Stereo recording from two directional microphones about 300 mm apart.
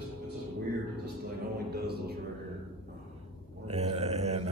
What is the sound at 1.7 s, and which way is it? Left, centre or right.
Speech, right.